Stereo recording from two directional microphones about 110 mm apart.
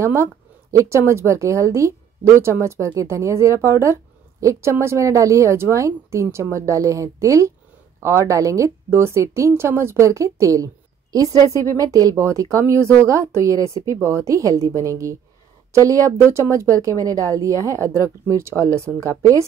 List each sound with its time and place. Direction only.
0.0 s speech: 25° right (ahead or behind)